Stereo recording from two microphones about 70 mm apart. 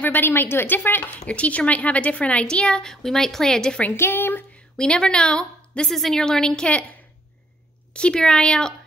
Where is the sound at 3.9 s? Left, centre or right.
Left.